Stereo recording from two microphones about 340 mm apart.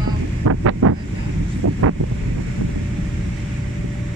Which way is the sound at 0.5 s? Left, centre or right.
Right.